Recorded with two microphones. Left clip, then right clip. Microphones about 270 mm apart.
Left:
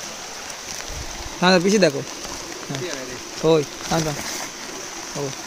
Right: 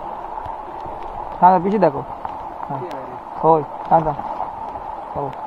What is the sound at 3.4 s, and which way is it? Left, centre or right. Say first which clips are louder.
Speech: right 3 dB; centre.